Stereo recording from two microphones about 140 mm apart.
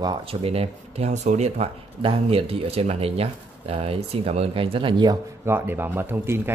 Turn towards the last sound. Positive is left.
turn(degrees=-15)  # may be behind; listen again after turning